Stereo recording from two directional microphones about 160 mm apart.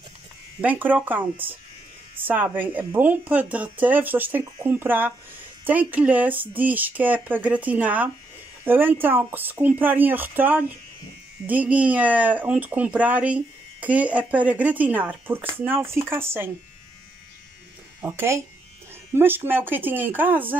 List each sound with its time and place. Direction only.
0.6 s speech: 10° right (ahead or behind)
2.2 s speech: 10° right (ahead or behind)
18.0 s speech: 15° right (ahead or behind)